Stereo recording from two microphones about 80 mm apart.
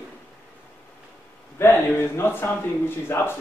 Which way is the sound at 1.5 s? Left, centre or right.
Left.